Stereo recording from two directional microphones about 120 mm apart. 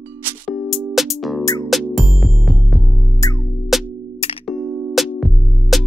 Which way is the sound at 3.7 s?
Centre (ahead or behind).